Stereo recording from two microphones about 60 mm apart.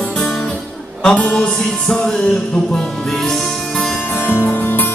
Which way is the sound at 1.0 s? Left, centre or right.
Left.